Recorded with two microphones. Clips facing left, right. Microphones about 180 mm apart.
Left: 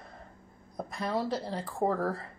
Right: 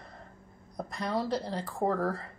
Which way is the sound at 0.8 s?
Centre (ahead or behind).